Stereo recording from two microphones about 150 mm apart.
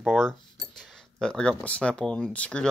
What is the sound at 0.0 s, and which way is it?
Speech, centre (ahead or behind).